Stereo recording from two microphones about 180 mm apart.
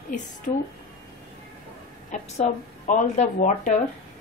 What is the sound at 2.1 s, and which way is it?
A woman's voice, 45° left (ahead or behind).